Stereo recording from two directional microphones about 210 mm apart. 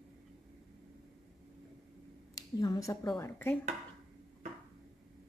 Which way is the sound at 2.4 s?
15° left (ahead or behind).